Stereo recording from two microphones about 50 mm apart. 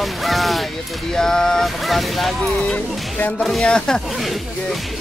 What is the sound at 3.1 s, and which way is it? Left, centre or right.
Speech, left.